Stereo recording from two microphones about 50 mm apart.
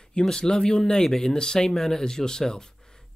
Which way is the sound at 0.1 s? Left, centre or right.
Centre.